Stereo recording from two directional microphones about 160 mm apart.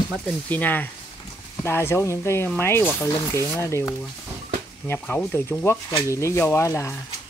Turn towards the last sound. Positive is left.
turn(degrees=20)  # may be behind; listen again after turning